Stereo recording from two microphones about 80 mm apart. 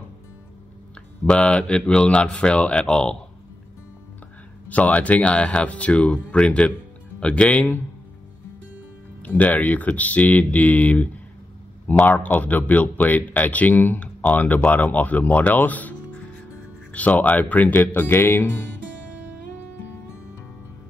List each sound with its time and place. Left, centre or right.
1.2 s speech: centre
4.6 s speech: centre
9.2 s speech: left
16.9 s speech: centre